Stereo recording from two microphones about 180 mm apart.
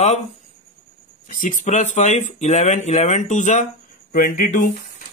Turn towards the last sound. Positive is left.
turn(degrees=50)  # may be behind; listen again after turning